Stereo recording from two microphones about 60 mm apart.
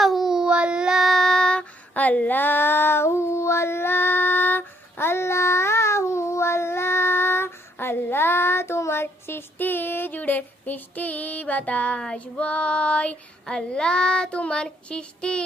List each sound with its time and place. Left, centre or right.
0.0 s child singing: centre
1.0 s child singing: centre
2.0 s female singing: left
12.0 s child singing: centre